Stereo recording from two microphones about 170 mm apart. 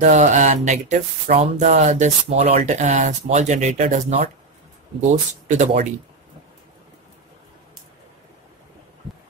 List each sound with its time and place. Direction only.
0.0 s speech: 45° right (ahead or behind)
5.5 s speech: 40° right (ahead or behind)